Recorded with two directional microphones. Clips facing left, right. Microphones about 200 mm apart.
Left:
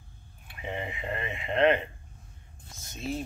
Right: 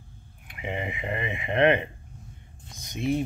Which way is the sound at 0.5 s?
15° right (ahead or behind).